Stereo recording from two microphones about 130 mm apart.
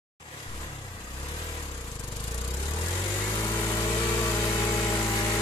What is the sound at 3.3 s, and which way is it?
Vehicle, 30° left (ahead or behind).